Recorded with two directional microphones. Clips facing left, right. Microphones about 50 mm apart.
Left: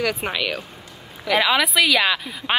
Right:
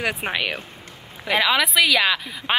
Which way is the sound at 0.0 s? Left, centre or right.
Right.